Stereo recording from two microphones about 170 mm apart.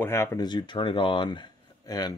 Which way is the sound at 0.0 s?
15° left (ahead or behind).